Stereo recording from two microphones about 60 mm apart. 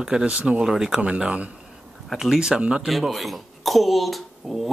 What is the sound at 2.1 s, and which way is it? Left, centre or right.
Speech, centre.